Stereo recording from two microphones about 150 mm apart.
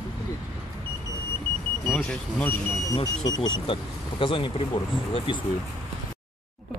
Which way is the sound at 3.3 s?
35° left (ahead or behind).